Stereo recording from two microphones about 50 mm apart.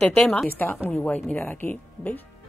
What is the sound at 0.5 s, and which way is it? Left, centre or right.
Speech, left.